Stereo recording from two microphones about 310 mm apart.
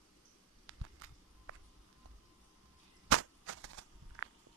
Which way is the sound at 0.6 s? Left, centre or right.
Right.